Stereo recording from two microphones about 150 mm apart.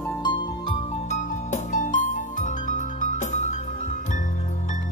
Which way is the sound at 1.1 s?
55° left (ahead or behind).